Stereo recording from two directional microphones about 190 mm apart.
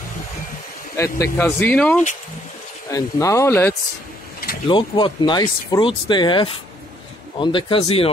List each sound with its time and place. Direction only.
0.9 s speech: 15° left (ahead or behind)
4.6 s speech: 25° left (ahead or behind)